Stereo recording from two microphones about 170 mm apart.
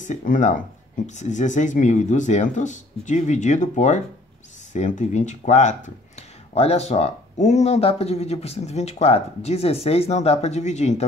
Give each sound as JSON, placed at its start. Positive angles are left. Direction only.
{"t": 0.0, "sound": "speech", "side_deg": 45}